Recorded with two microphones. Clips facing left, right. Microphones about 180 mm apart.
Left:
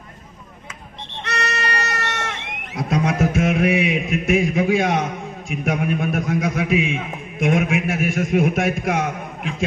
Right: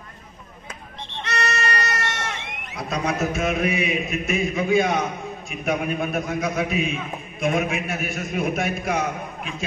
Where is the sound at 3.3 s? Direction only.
90° left.